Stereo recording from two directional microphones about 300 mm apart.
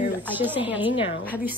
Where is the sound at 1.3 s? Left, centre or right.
Centre.